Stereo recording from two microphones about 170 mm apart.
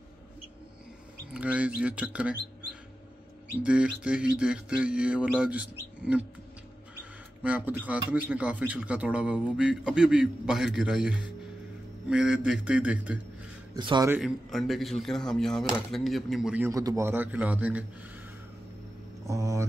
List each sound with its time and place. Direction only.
1.3 s a man's voice: 10° right (ahead or behind)
3.6 s a man's voice: 5° right (ahead or behind)
7.4 s a man's voice: 10° right (ahead or behind)
13.7 s a man's voice: 25° right (ahead or behind)
14.2 s speech: centre (ahead or behind)
16.6 s a man's voice: 20° right (ahead or behind)
19.2 s a man's voice: 20° right (ahead or behind)